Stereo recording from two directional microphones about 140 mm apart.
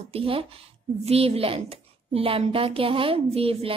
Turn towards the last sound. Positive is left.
turn(degrees=-45)  # may be behind; listen again after turning